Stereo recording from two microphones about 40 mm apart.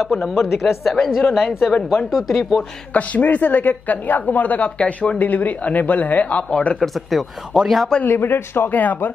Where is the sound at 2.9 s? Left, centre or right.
Left.